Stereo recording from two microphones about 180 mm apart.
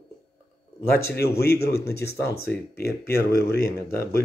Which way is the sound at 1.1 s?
60° left (ahead or behind).